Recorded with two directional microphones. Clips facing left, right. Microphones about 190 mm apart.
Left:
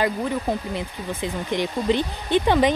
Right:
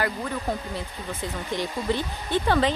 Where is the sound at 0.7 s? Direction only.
20° left (ahead or behind).